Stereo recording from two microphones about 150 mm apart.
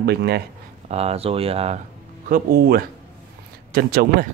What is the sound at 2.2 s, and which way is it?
Speech, 80° right.